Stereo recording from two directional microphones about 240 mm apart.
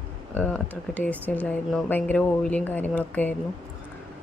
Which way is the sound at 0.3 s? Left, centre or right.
Centre.